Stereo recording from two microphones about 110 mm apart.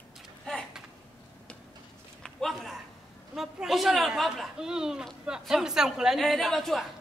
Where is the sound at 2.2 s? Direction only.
Centre (ahead or behind).